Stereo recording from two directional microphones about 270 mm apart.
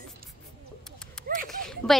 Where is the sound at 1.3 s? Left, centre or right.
Right.